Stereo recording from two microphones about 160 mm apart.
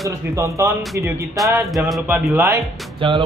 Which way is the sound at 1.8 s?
10° right (ahead or behind).